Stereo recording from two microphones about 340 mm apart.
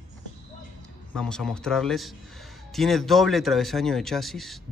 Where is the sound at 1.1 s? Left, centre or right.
Centre.